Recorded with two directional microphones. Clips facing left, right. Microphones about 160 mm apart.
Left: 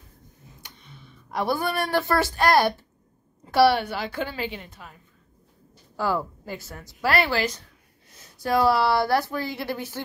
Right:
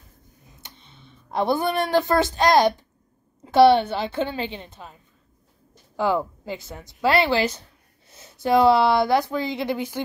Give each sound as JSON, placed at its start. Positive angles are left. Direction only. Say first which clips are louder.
{"t": 0.6, "sound": "speech", "louder": "even", "side_deg": -25}
{"t": 5.9, "sound": "speech", "louder": "right 3 dB", "side_deg": -20}